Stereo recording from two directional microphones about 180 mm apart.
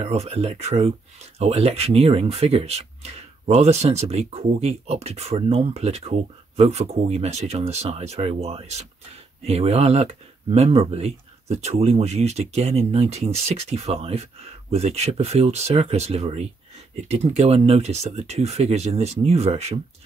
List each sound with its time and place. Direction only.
0.0 s speech: 35° right (ahead or behind)